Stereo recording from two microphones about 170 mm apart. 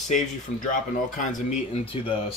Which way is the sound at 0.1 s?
50° left (ahead or behind).